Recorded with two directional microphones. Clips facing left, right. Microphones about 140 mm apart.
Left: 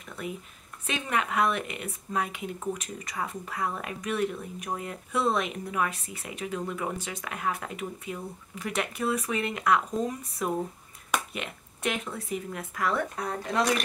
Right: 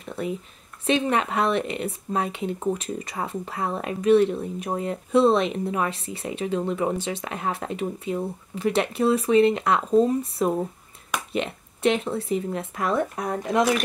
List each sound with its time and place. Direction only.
0.0 s speech: 30° right (ahead or behind)